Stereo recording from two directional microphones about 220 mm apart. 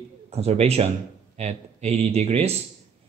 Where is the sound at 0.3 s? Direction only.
30° right (ahead or behind).